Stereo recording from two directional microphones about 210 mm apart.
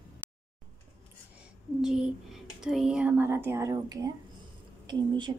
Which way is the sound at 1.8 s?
5° right (ahead or behind).